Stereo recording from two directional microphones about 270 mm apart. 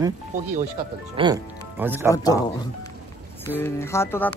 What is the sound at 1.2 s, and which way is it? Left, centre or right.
Speech, centre.